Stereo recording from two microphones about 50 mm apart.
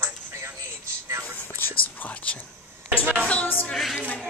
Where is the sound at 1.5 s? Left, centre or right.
Left.